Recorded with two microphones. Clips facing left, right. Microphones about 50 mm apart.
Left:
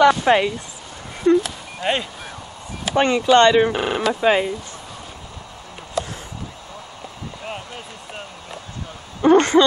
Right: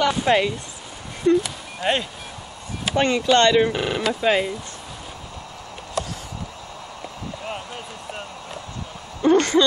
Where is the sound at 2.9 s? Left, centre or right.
Centre.